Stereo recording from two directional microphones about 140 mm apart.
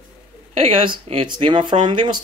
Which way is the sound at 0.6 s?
40° right (ahead or behind).